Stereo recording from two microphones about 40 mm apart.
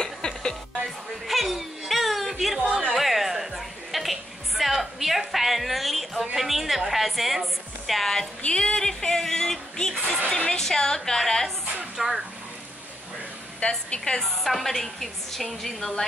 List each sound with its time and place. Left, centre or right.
0.0 s music: centre
1.2 s whimper: centre
3.0 s music: centre
8.4 s a woman's voice: left
12.0 s speech: centre
13.6 s a woman's voice: left
14.4 s a woman's voice: centre